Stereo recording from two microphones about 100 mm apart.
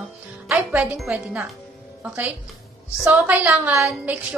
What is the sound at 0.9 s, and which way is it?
Speech, 10° right (ahead or behind).